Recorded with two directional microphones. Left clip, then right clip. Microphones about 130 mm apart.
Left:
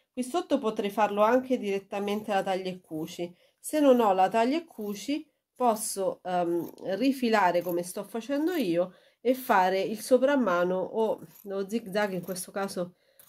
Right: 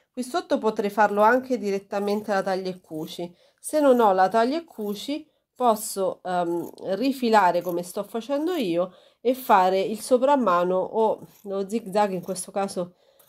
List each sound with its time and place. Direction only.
0.2 s speech: 40° right (ahead or behind)